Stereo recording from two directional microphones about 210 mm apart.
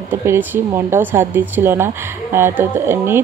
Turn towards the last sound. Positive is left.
turn(degrees=-10)  # may be behind; listen again after turning